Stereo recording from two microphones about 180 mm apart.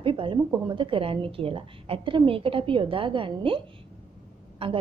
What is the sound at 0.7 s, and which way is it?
A woman's voice, 30° right (ahead or behind).